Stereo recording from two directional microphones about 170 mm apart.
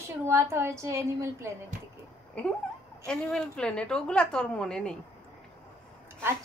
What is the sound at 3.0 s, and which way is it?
A woman's voice, 5° left (ahead or behind).